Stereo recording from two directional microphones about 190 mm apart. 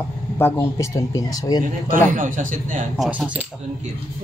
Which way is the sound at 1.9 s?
45° right (ahead or behind).